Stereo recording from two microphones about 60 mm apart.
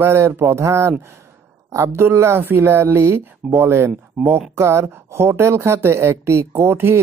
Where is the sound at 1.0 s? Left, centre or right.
Right.